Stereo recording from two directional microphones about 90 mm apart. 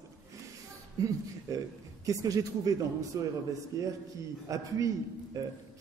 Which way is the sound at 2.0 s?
40° right (ahead or behind).